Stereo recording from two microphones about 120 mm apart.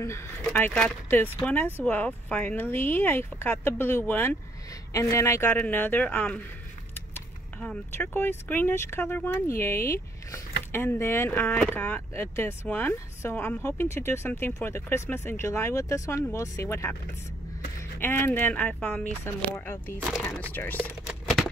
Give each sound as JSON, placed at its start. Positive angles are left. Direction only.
{"t": 0.4, "sound": "speech", "side_deg": 15}
{"t": 7.6, "sound": "speech", "side_deg": 10}
{"t": 18.0, "sound": "speech", "side_deg": 20}
{"t": 21.1, "sound": "a sound", "side_deg": 0}